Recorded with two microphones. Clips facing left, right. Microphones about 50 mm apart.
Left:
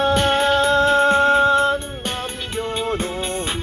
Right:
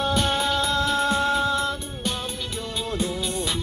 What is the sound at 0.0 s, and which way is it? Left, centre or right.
Music, left.